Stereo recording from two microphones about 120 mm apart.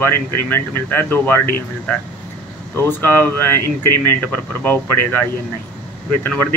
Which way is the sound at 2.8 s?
15° left (ahead or behind).